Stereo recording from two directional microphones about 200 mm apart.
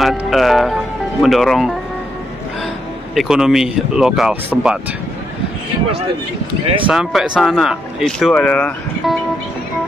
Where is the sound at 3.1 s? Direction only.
Centre (ahead or behind).